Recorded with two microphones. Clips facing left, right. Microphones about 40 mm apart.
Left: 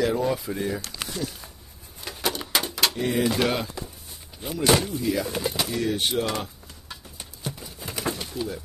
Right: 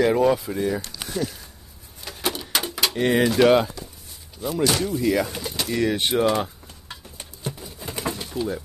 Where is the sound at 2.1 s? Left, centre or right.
Centre.